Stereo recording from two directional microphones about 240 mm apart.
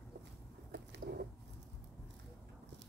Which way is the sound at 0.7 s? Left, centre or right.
Right.